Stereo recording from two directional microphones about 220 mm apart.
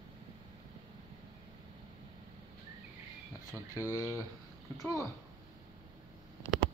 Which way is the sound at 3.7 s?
15° left (ahead or behind).